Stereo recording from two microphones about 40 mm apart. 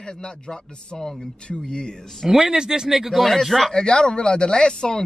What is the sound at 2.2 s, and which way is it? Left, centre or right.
Speech, centre.